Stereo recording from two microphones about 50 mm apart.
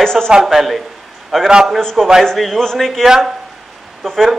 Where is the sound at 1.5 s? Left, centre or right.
Centre.